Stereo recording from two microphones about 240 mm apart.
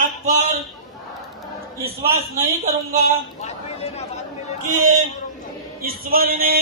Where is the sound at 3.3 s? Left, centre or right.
Left.